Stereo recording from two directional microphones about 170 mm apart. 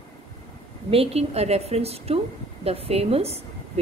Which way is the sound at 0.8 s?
35° right (ahead or behind).